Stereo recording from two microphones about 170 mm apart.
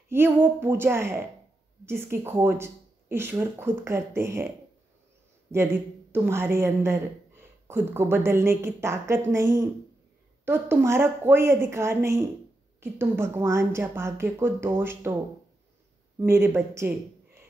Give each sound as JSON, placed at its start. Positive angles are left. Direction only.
{"t": 0.1, "sound": "speech", "side_deg": -15}
{"t": 5.5, "sound": "speech", "side_deg": -15}
{"t": 16.2, "sound": "speech", "side_deg": -15}